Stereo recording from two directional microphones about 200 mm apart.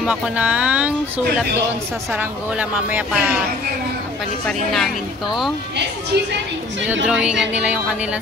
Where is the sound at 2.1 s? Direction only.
5° right (ahead or behind).